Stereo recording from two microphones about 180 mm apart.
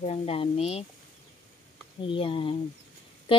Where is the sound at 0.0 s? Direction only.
35° left (ahead or behind).